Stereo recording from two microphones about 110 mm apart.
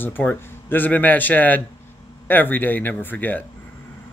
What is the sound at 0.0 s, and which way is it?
Speech, 15° left (ahead or behind).